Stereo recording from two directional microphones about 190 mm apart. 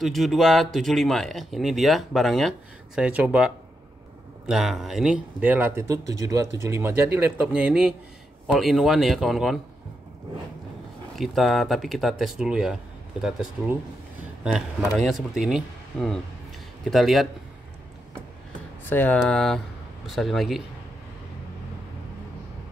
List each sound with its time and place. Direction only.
0.0 s speech: centre (ahead or behind)
11.1 s speech: centre (ahead or behind)
18.9 s speech: 10° left (ahead or behind)